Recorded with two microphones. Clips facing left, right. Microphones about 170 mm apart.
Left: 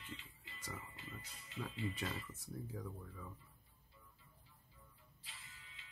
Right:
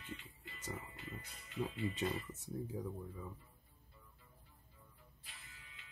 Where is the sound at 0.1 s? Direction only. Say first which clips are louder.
Right 4 dB; 50° right (ahead or behind).